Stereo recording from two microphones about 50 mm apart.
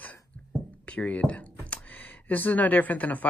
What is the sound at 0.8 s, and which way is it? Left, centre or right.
Speech, left.